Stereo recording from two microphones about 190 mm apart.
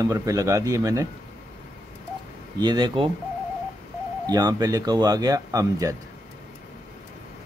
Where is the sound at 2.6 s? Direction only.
25° right (ahead or behind).